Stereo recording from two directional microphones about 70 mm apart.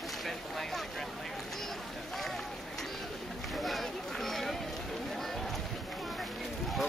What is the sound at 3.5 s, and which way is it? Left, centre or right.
Run, centre.